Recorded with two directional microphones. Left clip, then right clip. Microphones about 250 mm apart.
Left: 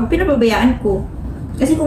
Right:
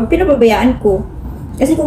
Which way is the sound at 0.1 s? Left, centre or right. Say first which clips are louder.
Right 5 dB; centre.